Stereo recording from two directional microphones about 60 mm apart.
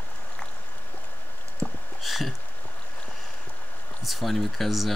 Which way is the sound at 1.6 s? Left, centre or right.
Left.